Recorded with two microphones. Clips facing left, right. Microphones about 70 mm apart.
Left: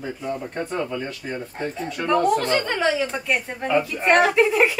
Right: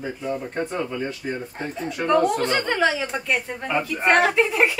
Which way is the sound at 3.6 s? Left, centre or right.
Right.